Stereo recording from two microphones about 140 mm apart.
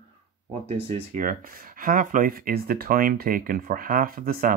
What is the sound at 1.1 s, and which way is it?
Speech, 75° right (ahead or behind).